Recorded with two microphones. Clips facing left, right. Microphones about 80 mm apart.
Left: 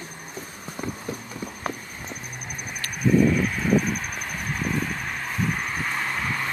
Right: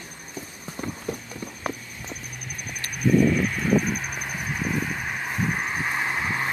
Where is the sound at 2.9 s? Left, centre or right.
Centre.